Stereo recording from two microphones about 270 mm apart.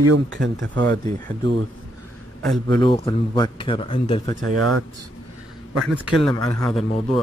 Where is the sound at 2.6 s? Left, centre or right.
Centre.